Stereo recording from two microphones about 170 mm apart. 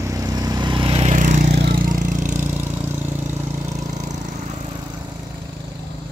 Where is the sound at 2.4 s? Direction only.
10° right (ahead or behind).